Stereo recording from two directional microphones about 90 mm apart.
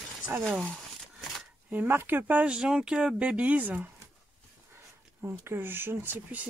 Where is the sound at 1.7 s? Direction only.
20° right (ahead or behind).